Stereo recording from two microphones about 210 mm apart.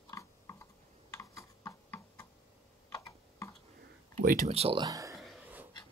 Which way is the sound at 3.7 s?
45° right (ahead or behind).